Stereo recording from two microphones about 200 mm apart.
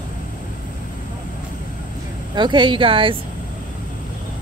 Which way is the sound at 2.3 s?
25° right (ahead or behind).